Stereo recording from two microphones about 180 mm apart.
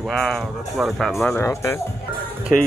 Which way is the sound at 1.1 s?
15° left (ahead or behind).